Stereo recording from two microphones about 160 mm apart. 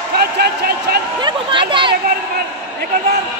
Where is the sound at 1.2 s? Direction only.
30° right (ahead or behind).